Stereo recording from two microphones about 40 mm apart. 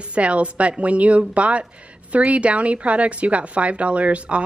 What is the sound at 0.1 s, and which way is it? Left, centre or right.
A woman's voice, right.